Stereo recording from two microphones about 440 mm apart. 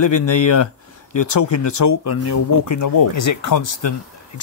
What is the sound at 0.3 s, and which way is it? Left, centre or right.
Speech, left.